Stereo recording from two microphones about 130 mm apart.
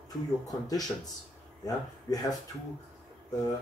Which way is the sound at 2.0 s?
30° left (ahead or behind).